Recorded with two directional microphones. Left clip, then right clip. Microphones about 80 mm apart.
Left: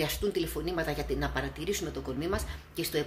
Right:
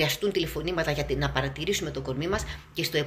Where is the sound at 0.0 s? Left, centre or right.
Left.